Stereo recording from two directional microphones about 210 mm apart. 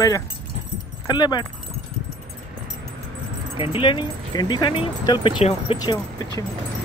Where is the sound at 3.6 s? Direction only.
25° left (ahead or behind).